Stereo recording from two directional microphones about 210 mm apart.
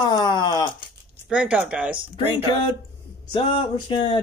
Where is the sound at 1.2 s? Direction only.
5° right (ahead or behind).